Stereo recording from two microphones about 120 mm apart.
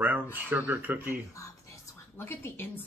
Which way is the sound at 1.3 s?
25° left (ahead or behind).